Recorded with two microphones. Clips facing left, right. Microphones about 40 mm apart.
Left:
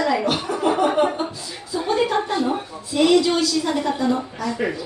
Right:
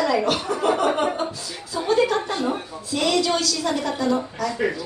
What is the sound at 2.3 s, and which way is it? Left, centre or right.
A woman's voice, centre.